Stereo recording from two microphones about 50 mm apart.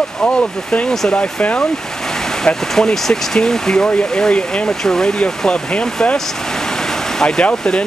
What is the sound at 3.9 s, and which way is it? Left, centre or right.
Speech, left.